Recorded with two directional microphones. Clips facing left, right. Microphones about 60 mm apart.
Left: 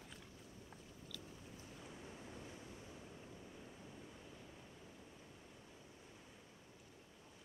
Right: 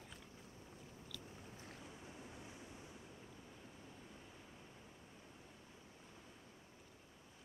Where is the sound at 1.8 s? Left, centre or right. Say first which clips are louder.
Left 1 dB; centre.